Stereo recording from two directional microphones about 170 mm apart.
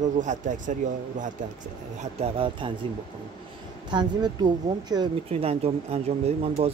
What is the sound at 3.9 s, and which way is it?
Speech, 25° right (ahead or behind).